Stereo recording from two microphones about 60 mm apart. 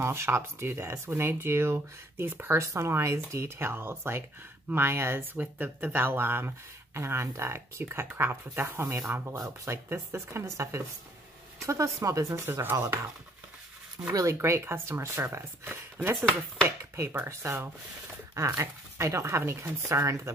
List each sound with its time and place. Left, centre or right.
0.0 s speech: right
2.6 s speech: right
14.2 s speech: right
18.3 s speech: right